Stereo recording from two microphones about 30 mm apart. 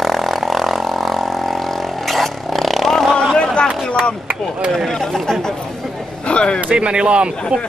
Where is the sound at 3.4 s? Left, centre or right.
Left.